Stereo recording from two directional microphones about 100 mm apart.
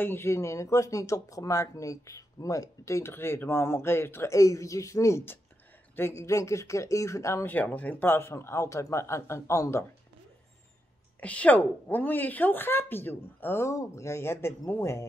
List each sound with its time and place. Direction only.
0.0 s speech: 25° left (ahead or behind)
7.4 s speech: 20° left (ahead or behind)
11.1 s speech: 15° left (ahead or behind)